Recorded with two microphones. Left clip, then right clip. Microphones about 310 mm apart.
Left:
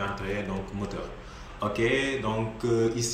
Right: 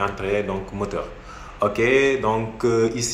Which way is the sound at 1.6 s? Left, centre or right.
Centre.